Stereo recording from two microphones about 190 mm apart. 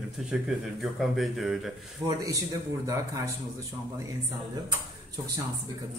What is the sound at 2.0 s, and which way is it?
Speech, 20° right (ahead or behind).